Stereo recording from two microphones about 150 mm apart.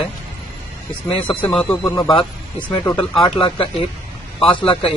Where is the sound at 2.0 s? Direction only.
30° left (ahead or behind).